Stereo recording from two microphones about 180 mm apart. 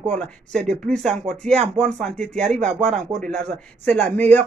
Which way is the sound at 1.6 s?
40° right (ahead or behind).